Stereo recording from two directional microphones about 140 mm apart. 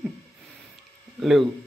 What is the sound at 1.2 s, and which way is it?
Speech, centre (ahead or behind).